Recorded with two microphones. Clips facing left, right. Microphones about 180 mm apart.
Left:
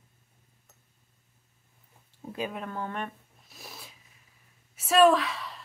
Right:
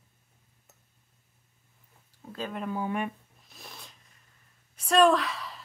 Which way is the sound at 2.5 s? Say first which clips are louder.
Right 4 dB; 5° right (ahead or behind).